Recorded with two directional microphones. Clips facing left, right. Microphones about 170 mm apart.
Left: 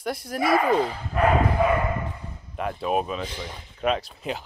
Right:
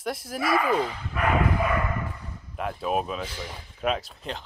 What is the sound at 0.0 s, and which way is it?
Speech, centre (ahead or behind).